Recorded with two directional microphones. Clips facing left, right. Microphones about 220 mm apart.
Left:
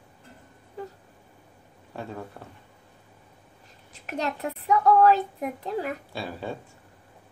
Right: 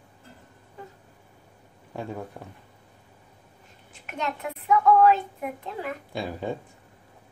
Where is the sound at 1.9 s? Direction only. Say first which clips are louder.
Right 2 dB; 15° right (ahead or behind).